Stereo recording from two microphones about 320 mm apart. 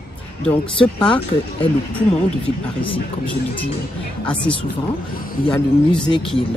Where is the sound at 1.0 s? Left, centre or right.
Centre.